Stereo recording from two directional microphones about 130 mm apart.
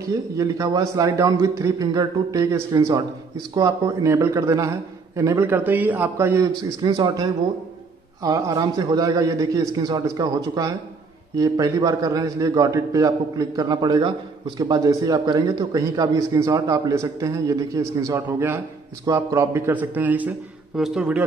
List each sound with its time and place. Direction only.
0.0 s a man's voice: 25° right (ahead or behind); by 21.2 s 5° right (ahead or behind)